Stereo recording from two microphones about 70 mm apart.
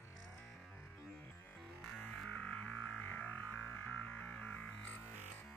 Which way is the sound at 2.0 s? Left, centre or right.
Centre.